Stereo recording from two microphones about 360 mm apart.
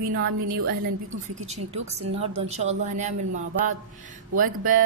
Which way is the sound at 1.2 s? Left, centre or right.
Centre.